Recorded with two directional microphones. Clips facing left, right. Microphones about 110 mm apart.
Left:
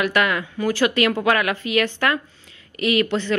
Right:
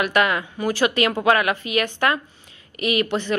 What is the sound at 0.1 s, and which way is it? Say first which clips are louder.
A woman's voice: right 1 dB; 20° right (ahead or behind).